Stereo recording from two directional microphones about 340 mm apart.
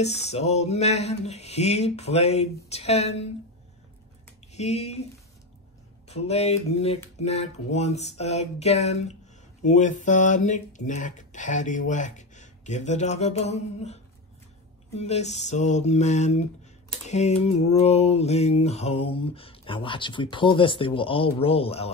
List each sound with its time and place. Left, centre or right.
0.0 s speech: centre
4.5 s speech: centre
6.0 s mantra: centre
7.2 s speech: centre
15.0 s speech: centre
17.0 s mantra: centre